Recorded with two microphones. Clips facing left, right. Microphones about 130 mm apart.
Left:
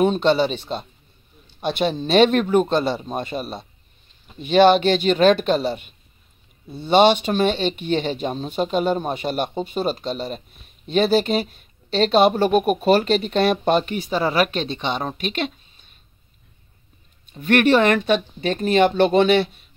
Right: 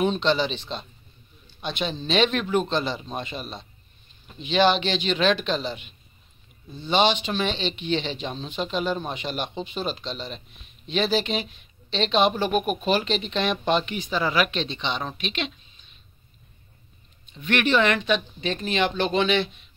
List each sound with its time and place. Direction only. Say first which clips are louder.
0.0 s speech: left 5 dB; 45° left (ahead or behind)
17.3 s speech: left 7 dB; 45° left (ahead or behind)